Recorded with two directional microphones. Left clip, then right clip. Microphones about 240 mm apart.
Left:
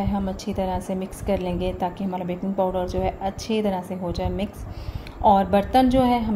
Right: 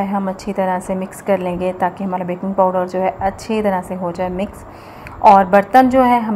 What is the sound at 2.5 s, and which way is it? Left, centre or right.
Speech, right.